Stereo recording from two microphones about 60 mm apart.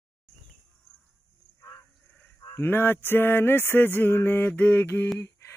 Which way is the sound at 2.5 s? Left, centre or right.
Left.